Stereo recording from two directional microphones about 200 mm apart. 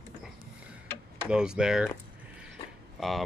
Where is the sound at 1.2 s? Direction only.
5° right (ahead or behind).